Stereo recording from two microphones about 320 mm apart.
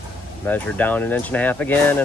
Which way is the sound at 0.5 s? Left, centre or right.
Centre.